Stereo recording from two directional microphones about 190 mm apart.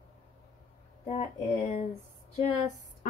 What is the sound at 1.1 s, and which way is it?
Speech, 35° left (ahead or behind).